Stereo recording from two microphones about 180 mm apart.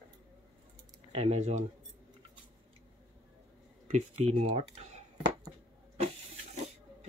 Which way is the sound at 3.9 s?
35° right (ahead or behind).